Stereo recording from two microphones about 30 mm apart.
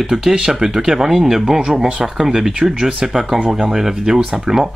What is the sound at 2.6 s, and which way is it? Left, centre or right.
Speech, right.